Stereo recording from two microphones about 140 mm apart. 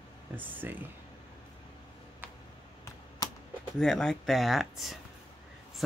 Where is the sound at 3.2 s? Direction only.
30° left (ahead or behind).